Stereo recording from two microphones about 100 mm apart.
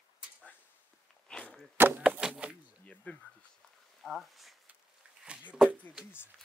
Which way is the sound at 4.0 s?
Centre (ahead or behind).